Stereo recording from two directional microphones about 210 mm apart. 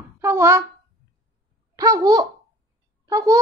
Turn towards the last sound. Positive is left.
turn(degrees=-15)  # may be behind; listen again after turning